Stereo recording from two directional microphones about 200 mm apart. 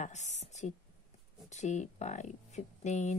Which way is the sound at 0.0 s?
35° left (ahead or behind).